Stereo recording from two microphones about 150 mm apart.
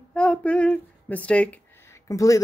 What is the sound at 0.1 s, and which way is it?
Speech, 5° left (ahead or behind).